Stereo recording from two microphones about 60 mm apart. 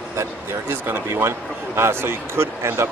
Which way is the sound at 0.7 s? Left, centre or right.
Right.